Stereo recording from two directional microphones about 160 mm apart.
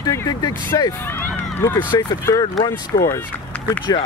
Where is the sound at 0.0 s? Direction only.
25° left (ahead or behind).